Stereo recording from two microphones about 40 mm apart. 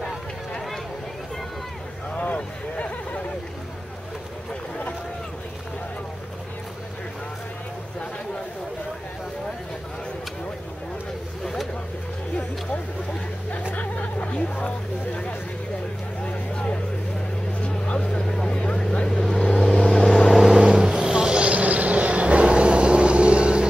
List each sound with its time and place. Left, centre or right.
2.1 s a sound: left
13.7 s vehicle: left
16.3 s vehicle: left
20.2 s vehicle: centre
20.5 s vehicle: right